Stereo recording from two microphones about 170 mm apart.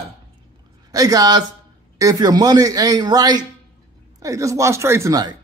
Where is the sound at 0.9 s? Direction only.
20° right (ahead or behind).